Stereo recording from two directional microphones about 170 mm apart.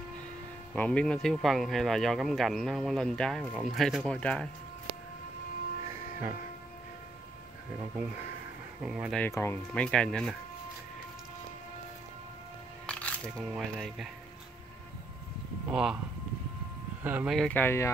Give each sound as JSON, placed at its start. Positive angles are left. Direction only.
{"t": 0.7, "sound": "speech", "side_deg": 10}
{"t": 8.8, "sound": "speech", "side_deg": -5}
{"t": 9.2, "sound": "speech", "side_deg": 15}
{"t": 12.8, "sound": "music", "side_deg": 5}
{"t": 13.5, "sound": "speech", "side_deg": 0}
{"t": 15.7, "sound": "speech", "side_deg": -5}
{"t": 17.0, "sound": "speech", "side_deg": -10}
{"t": 17.4, "sound": "speech", "side_deg": 10}